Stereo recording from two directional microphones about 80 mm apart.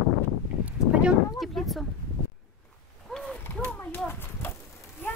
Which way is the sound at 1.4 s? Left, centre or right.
Centre.